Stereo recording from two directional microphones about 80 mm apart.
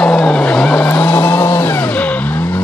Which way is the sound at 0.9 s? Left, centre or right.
Left.